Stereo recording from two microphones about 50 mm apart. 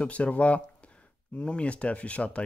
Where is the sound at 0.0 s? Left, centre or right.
Left.